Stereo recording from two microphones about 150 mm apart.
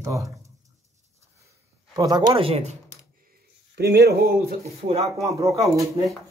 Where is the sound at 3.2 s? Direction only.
90° right.